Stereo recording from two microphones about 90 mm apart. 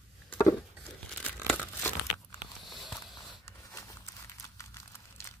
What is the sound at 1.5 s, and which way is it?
Crumpling, 25° left (ahead or behind).